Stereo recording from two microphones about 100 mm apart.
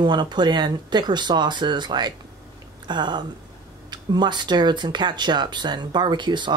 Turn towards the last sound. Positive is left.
turn(degrees=-50)  # may be behind; listen again after turning